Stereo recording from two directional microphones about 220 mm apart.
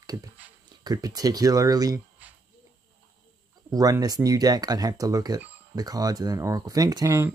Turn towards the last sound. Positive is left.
turn(degrees=-15)  # may be behind; listen again after turning